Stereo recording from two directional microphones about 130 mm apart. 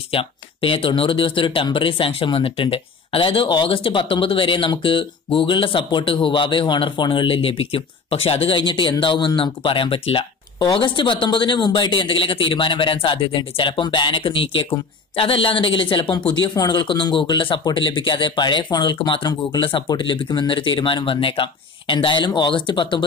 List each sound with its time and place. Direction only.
0.1 s speech: 45° left (ahead or behind)